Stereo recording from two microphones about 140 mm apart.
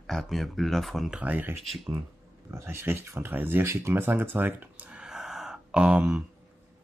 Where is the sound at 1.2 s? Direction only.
10° right (ahead or behind).